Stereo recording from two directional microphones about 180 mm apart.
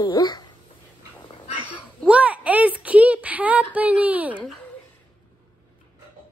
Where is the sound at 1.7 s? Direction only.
5° right (ahead or behind).